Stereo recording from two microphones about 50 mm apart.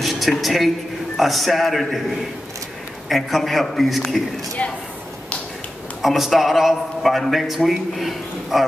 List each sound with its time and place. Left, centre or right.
0.0 s a woman's voice: centre
3.1 s a man's voice: centre
4.6 s speech: left
6.0 s a man's voice: centre